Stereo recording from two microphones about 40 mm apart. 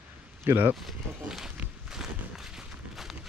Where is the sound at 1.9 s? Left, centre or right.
Centre.